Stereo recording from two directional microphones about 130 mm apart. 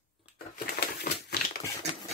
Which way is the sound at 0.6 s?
90° left.